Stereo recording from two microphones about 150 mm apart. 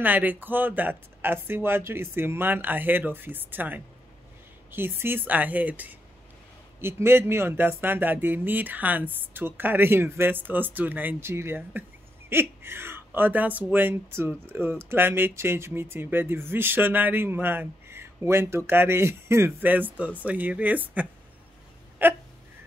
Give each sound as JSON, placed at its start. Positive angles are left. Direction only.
{"t": 0.0, "sound": "speech", "side_deg": -10}